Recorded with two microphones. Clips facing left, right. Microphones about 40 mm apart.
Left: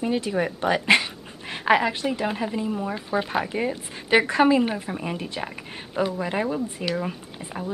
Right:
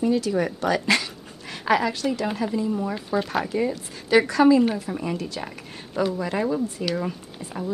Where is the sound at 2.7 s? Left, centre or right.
Centre.